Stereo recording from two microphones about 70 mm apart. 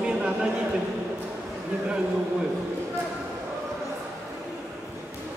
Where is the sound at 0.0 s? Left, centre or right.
Centre.